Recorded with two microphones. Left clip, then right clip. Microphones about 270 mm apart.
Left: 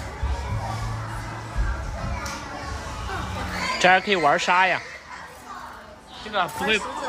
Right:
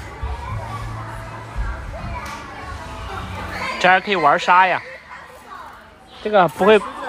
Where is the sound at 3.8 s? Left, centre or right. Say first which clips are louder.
Right 3 dB; centre.